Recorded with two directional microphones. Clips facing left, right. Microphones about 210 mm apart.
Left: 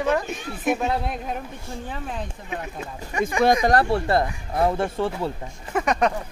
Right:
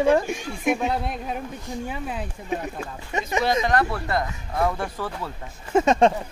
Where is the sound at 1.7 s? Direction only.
10° right (ahead or behind).